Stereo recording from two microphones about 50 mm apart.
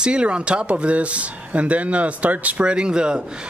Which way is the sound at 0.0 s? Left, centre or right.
Right.